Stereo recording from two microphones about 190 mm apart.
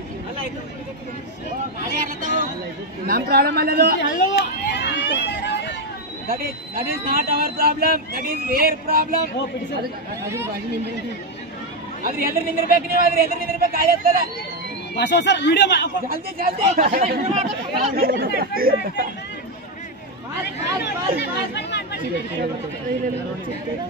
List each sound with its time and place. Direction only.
3.1 s a man's voice: 55° right (ahead or behind)
4.0 s a sound: 65° left (ahead or behind)
6.2 s speech: 50° right (ahead or behind)
10.2 s speech: 15° right (ahead or behind)
12.0 s speech: 50° right (ahead or behind)
15.0 s speech: 65° left (ahead or behind)
16.1 s speech: 50° right (ahead or behind)
17.2 s speech: 35° right (ahead or behind)
17.9 s speech: 50° right (ahead or behind)
20.6 s speech: 65° left (ahead or behind)